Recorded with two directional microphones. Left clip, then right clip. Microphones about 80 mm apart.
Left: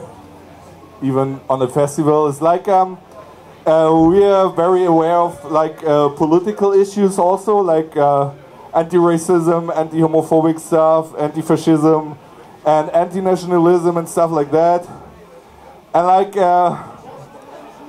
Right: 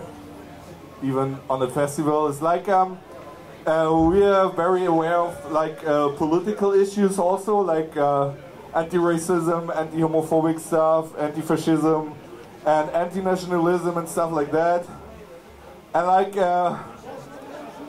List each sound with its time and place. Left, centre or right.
1.0 s speech: left
15.9 s speech: left